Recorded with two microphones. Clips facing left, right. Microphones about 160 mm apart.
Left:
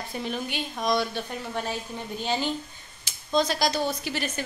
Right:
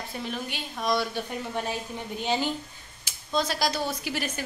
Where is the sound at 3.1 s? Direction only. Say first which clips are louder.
Left 3 dB; 5° right (ahead or behind).